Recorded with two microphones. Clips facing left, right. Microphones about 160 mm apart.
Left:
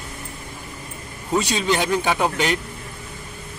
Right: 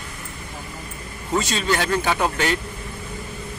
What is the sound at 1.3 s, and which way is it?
Speech, 15° left (ahead or behind).